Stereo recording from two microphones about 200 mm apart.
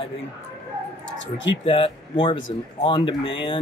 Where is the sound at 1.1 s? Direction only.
65° left (ahead or behind).